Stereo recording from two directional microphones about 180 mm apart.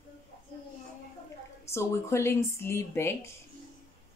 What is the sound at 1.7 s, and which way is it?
Speech, 15° left (ahead or behind).